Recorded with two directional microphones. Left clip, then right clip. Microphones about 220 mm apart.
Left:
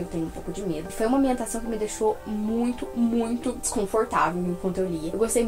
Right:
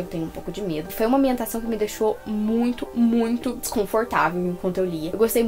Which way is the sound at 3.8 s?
40° right (ahead or behind).